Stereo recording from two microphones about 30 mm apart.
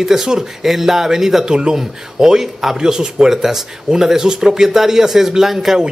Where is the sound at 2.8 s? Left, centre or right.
Right.